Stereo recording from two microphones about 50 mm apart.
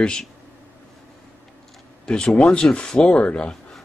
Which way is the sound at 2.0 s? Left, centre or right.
Centre.